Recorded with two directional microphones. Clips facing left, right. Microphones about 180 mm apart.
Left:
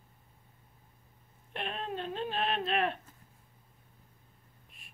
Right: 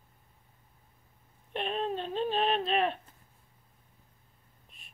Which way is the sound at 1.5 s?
20° right (ahead or behind).